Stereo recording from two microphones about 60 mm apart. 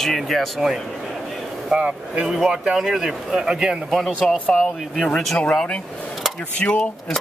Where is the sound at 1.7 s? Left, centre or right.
Centre.